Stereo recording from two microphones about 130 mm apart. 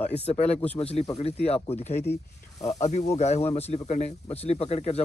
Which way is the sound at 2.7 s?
60° left (ahead or behind).